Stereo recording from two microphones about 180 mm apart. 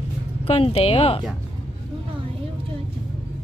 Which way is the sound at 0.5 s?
35° left (ahead or behind).